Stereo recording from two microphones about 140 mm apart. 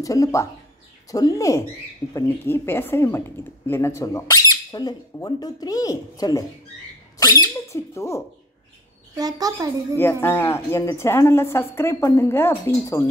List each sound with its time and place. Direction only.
0.0 s speech: 25° left (ahead or behind)
9.1 s a woman's voice: 25° right (ahead or behind)
10.2 s a woman's voice: 15° left (ahead or behind)